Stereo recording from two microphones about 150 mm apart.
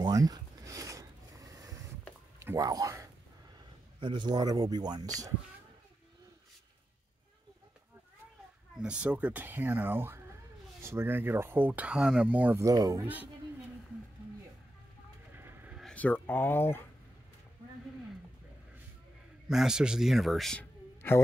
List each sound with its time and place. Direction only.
0.0 s a sound: 25° right (ahead or behind)
2.4 s speech: 25° right (ahead or behind)
8.7 s speech: 5° right (ahead or behind)
12.6 s speech: 25° right (ahead or behind)
13.0 s speech: 10° right (ahead or behind)
15.3 s vehicle: 15° right (ahead or behind)
15.8 s speech: 10° left (ahead or behind)
19.5 s speech: 5° right (ahead or behind)
21.0 s speech: 15° left (ahead or behind)